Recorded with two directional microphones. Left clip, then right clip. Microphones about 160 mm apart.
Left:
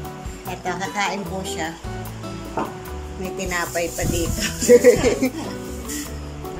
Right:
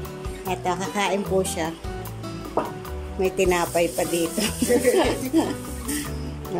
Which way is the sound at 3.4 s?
20° right (ahead or behind).